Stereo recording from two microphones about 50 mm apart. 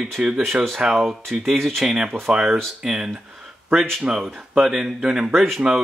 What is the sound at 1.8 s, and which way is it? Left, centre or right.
Speech, centre.